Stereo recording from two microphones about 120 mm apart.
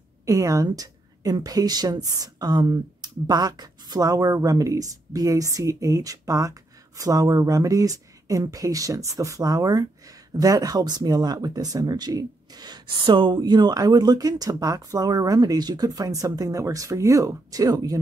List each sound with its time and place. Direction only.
0.2 s speech: 30° right (ahead or behind)